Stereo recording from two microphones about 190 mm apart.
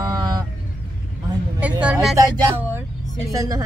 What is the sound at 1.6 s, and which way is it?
Vehicle, 5° right (ahead or behind).